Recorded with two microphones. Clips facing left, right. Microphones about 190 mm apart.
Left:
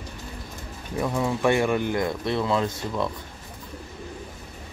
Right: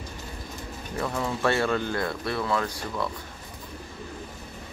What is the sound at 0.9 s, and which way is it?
Speech, 15° left (ahead or behind).